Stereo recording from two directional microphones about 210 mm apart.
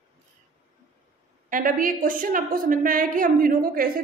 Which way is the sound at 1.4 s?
40° right (ahead or behind).